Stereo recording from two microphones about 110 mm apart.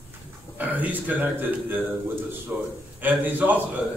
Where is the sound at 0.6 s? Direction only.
15° right (ahead or behind).